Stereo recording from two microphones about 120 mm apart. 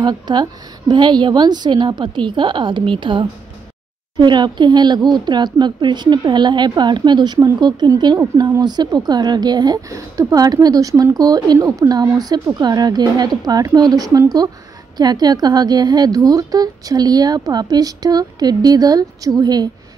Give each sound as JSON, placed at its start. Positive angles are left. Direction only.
{"t": 0.0, "sound": "a woman's voice", "side_deg": -40}